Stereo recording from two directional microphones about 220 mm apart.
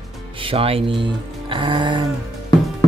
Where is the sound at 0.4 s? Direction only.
25° right (ahead or behind).